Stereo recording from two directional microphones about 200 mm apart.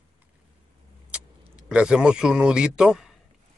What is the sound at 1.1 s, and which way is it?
Vehicle, 5° right (ahead or behind).